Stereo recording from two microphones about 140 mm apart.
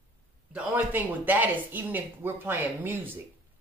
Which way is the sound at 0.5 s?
10° right (ahead or behind).